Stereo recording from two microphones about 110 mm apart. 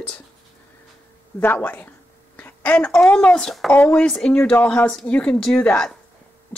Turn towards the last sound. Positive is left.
turn(degrees=10)  # may be behind; listen again after turning